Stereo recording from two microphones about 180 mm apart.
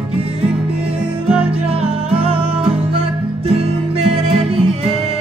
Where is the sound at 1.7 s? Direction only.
35° right (ahead or behind).